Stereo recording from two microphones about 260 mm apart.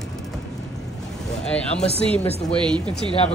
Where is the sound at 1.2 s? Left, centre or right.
Centre.